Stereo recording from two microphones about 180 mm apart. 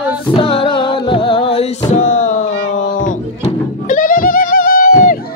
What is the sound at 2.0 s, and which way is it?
Music, 45° left (ahead or behind).